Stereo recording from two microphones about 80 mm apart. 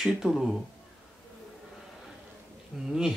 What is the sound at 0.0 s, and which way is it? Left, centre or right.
Speech, centre.